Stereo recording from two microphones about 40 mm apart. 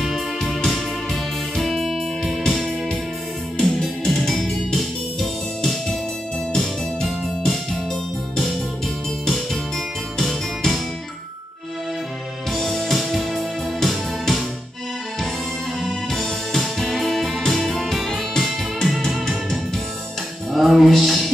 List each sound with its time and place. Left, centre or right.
0.1 s music: centre
12.4 s music: centre
15.8 s music: centre
20.5 s music: centre